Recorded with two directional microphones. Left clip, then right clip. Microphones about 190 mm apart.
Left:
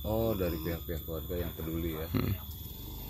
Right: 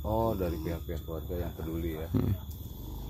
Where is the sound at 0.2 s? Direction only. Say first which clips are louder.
Right 1 dB; 40° left (ahead or behind).